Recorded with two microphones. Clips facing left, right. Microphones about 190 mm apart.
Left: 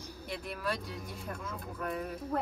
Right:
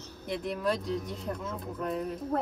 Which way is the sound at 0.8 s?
Centre (ahead or behind).